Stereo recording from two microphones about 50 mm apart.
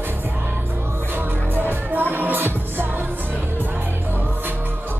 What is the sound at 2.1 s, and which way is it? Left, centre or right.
Music, right.